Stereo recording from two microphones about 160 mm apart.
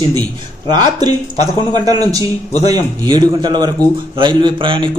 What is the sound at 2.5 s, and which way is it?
Speech, 45° left (ahead or behind).